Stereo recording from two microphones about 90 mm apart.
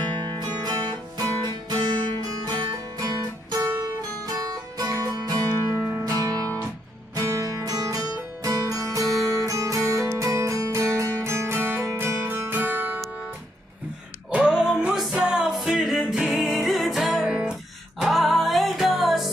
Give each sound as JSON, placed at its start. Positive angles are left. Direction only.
{"t": 0.0, "sound": "music", "side_deg": -55}
{"t": 3.0, "sound": "music", "side_deg": -45}
{"t": 14.3, "sound": "music", "side_deg": -10}